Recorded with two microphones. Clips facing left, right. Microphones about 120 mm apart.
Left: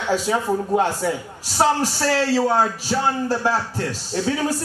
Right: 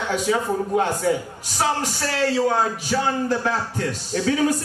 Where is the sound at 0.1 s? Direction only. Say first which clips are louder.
Left 2 dB; 30° left (ahead or behind).